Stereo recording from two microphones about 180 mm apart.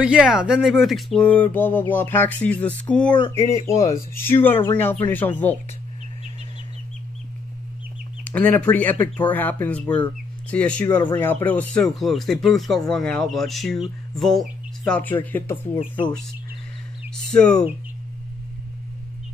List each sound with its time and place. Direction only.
0.0 s speech: 5° right (ahead or behind)
8.2 s speech: 10° left (ahead or behind)
15.5 s speech: 30° left (ahead or behind)
17.1 s speech: 5° left (ahead or behind)